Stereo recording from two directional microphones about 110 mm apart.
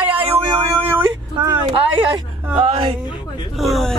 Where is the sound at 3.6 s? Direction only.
Centre (ahead or behind).